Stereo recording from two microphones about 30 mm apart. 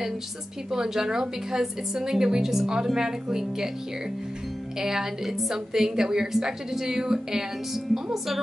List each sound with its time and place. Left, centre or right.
0.7 s a woman's voice: centre
4.7 s a woman's voice: centre